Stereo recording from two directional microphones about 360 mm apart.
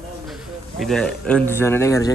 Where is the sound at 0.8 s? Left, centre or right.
Centre.